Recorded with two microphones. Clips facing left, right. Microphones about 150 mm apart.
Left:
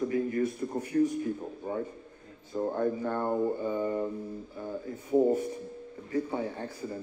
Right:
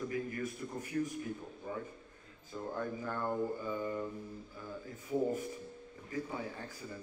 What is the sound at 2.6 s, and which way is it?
A man's voice, 40° left (ahead or behind).